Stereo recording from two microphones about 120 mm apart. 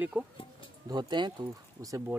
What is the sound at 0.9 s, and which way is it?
Speech, 40° right (ahead or behind).